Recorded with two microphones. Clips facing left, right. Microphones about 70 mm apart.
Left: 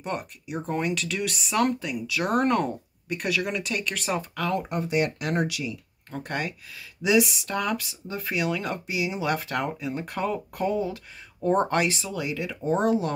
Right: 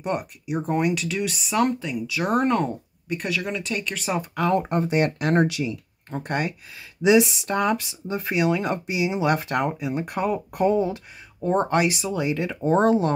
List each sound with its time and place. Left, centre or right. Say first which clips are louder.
0.0 s speech: right 5 dB; centre
4.4 s speech: right 6 dB; right
11.7 s speech: right 3 dB; centre
12.1 s speech: right 5 dB; right
12.4 s speech: right 4 dB; right